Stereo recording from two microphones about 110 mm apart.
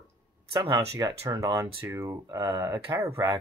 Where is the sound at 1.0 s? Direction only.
35° right (ahead or behind).